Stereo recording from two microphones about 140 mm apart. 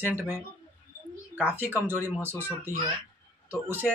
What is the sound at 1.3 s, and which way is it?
Speech, 15° right (ahead or behind).